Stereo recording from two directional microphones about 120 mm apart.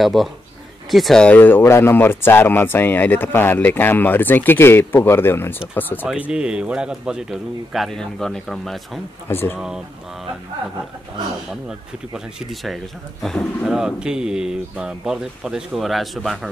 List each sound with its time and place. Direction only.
0.0 s a man's voice: centre (ahead or behind); by 5.6 s 20° left (ahead or behind)
6.0 s a man's voice: 10° right (ahead or behind)
9.3 s speech: 20° left (ahead or behind)
9.6 s a man's voice: 5° right (ahead or behind)
12.1 s a man's voice: 5° right (ahead or behind)